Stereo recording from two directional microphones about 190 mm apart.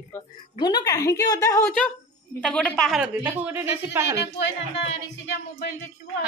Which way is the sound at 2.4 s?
5° left (ahead or behind).